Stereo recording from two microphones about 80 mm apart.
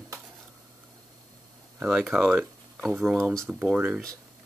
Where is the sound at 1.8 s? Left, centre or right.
Centre.